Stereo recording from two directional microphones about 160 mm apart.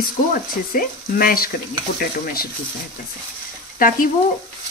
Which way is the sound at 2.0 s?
65° left (ahead or behind).